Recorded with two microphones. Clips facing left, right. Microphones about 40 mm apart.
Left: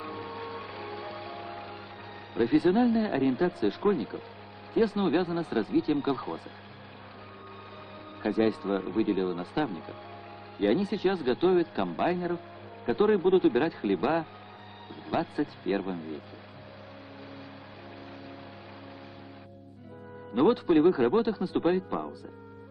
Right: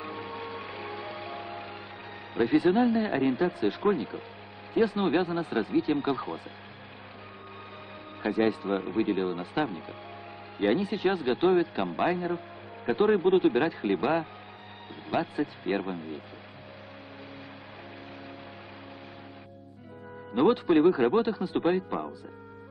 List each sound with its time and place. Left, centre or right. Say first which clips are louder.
0.0 s music: right 1 dB; right
2.3 s speech: even; centre
8.2 s speech: even; right
15.0 s speech: right 1 dB; right
20.3 s speech: even; right